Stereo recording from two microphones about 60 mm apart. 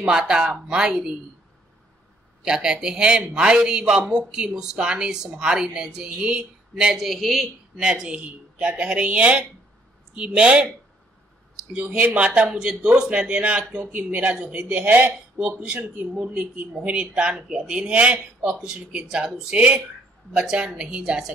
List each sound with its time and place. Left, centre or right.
0.0 s a man's voice: centre
2.4 s a man's voice: centre
7.8 s a man's voice: centre
11.7 s a man's voice: right
18.6 s a man's voice: centre